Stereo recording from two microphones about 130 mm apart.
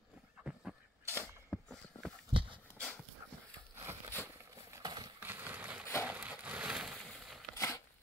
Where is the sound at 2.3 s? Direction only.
40° right (ahead or behind).